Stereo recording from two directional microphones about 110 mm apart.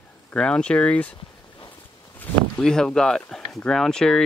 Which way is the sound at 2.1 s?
15° left (ahead or behind).